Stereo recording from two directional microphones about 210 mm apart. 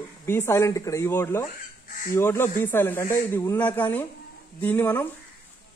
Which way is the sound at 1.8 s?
40° left (ahead or behind).